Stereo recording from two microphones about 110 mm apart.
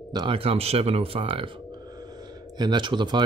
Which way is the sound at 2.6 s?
45° right (ahead or behind).